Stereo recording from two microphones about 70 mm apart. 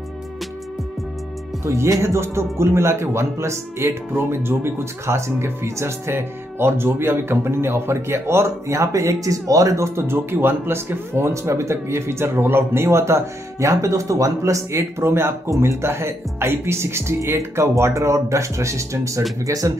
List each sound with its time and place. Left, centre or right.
1.6 s speech: right